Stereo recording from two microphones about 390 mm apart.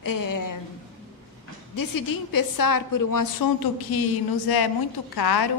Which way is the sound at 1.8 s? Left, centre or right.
Left.